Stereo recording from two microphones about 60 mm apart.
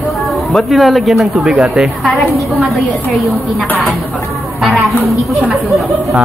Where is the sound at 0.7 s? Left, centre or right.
Centre.